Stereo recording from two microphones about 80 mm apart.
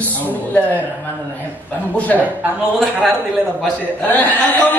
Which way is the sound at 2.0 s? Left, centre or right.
Centre.